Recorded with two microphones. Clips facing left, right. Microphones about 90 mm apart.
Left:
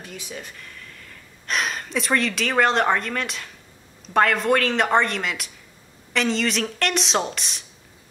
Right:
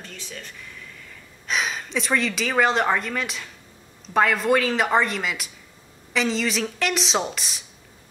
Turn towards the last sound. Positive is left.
turn(degrees=0)  # may be behind; listen again after turning